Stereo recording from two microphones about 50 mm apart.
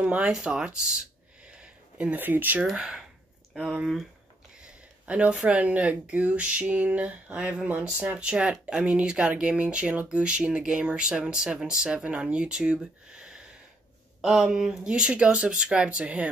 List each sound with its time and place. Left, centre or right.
0.0 s speech: centre
1.5 s a sound: right
2.1 s speech: right
2.6 s speech: centre
4.6 s a sound: right
5.3 s speech: centre
5.6 s speech: right